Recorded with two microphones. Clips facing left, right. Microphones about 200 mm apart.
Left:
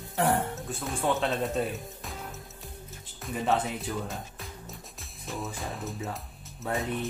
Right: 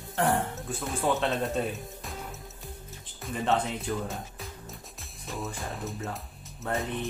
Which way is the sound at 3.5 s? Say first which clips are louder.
Right 1 dB; centre (ahead or behind).